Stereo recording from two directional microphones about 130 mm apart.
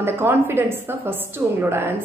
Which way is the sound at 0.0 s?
20° right (ahead or behind).